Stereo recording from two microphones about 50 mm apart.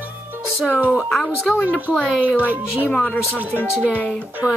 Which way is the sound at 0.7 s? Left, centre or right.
Right.